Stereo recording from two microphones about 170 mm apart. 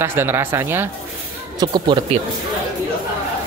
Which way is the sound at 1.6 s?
25° right (ahead or behind).